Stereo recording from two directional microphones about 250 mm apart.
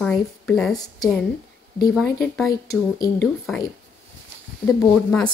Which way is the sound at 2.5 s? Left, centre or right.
Centre.